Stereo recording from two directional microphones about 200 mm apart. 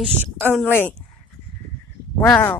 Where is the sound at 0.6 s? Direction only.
10° left (ahead or behind).